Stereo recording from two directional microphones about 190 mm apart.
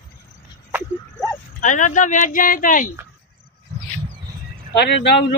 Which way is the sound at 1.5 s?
40° left (ahead or behind).